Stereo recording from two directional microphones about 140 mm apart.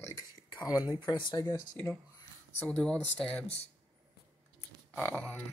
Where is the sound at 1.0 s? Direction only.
35° left (ahead or behind).